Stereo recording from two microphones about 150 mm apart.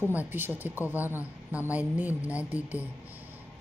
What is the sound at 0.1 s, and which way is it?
Speech, 10° right (ahead or behind).